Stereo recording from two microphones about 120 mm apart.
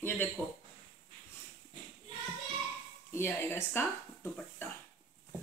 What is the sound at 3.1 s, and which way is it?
Speech, 20° left (ahead or behind).